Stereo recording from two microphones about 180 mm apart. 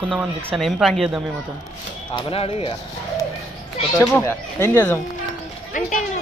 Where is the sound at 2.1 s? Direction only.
30° left (ahead or behind).